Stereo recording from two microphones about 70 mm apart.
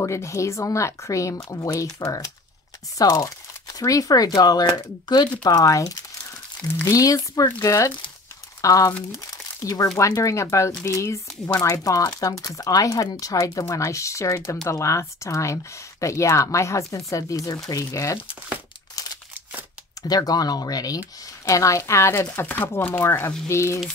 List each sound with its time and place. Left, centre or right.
0.0 s speech: left
5.4 s speech: left
9.1 s crumpling: left
10.2 s speech: left
19.0 s a sound: left
20.0 s speech: left
21.5 s speech: left
22.3 s speech: left
22.9 s speech: left